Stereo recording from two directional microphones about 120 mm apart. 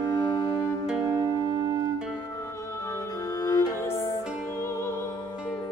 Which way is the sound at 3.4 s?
30° left (ahead or behind).